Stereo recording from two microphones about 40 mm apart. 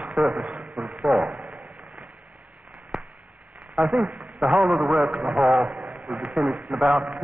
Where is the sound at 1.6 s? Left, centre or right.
Right.